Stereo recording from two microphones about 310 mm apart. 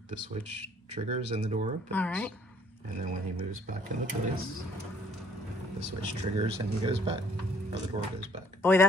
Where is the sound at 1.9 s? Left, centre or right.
Centre.